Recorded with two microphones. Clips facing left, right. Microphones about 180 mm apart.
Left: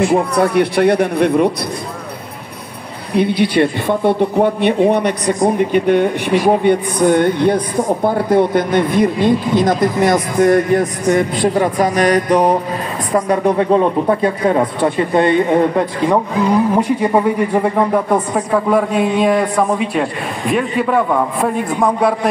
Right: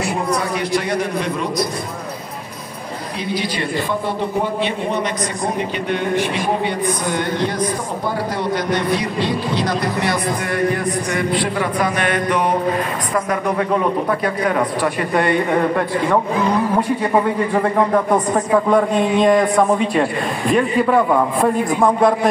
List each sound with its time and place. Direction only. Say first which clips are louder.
0.1 s a woman's voice: left 7 dB; 60° left (ahead or behind)
3.2 s a woman's voice: left 11 dB; 60° left (ahead or behind); by 22.3 s centre (ahead or behind)